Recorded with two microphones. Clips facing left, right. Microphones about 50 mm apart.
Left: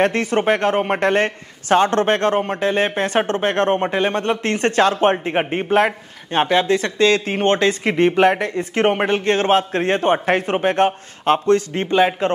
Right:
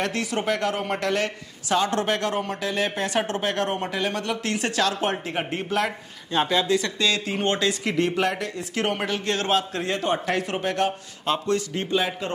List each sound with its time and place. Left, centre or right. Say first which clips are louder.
0.0 s a man's voice: left 8 dB; left